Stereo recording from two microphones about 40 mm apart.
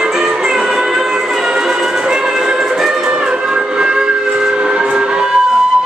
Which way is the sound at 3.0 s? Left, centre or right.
Right.